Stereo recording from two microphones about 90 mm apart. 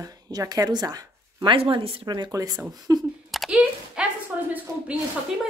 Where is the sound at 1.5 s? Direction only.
80° right.